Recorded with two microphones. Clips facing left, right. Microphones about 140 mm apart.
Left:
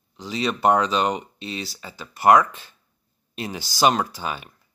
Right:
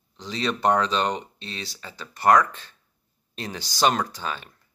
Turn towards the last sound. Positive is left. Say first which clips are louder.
# left 2 dB
turn(degrees=10)  # may be behind; listen again after turning